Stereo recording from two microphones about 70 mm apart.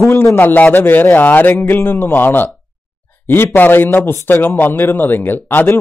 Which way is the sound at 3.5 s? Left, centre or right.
Left.